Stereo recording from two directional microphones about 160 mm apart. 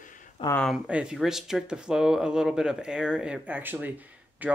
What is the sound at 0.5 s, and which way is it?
Speech, 5° left (ahead or behind).